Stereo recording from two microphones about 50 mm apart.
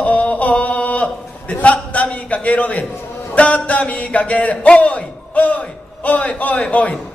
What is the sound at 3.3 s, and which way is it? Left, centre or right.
Speech, left.